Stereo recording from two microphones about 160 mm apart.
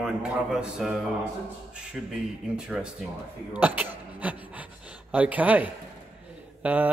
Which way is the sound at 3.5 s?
10° right (ahead or behind).